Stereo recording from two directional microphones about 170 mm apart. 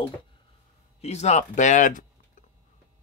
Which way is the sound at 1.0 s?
40° left (ahead or behind).